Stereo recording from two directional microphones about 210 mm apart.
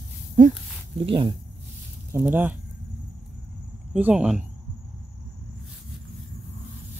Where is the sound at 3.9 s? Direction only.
5° right (ahead or behind).